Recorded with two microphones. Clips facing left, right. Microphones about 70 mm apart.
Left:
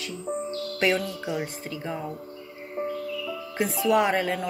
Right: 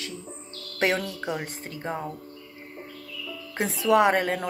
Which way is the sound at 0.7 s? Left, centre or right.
Right.